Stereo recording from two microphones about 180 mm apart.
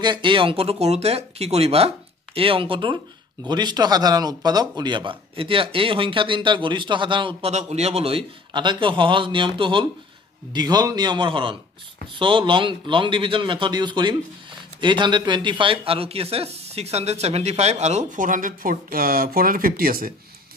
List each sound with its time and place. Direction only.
0.0 s a man's voice: 25° right (ahead or behind); by 20.2 s 50° right (ahead or behind)